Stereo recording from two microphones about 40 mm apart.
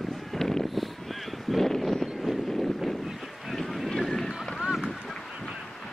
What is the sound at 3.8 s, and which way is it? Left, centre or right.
Horse, centre.